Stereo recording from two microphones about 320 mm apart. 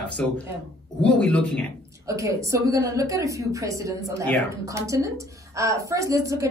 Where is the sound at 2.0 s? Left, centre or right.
Centre.